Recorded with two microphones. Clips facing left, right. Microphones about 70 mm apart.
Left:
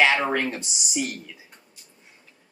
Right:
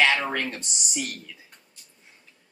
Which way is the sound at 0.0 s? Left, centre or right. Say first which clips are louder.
Left 2 dB; centre.